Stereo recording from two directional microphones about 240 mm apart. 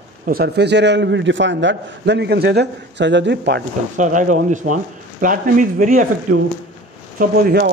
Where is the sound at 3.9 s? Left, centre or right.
Right.